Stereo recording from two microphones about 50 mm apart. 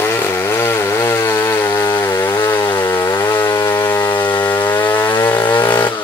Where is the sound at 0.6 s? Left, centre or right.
Left.